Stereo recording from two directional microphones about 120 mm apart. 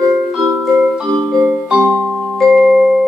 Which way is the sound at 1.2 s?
20° right (ahead or behind).